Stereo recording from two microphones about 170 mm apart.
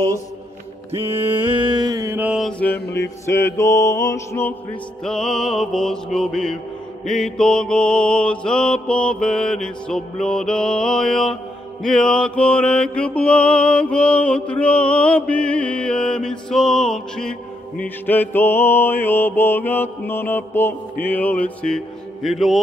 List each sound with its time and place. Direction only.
1.4 s mantra: 30° right (ahead or behind); by 2.5 s 5° right (ahead or behind)
3.3 s mantra: 15° left (ahead or behind)
5.0 s mantra: 5° left (ahead or behind)